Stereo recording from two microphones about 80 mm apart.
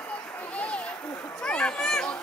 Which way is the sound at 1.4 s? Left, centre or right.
Centre.